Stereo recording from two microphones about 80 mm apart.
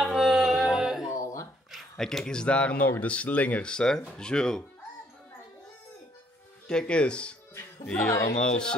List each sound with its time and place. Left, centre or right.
0.0 s music: centre
1.0 s a sound: left
1.7 s speech: centre
6.7 s speech: centre